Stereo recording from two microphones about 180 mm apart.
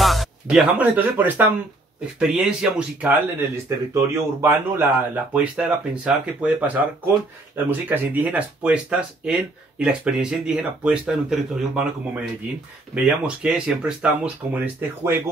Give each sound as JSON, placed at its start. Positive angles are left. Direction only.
{"t": 0.0, "sound": "speech", "side_deg": 0}
{"t": 12.9, "sound": "speech", "side_deg": -5}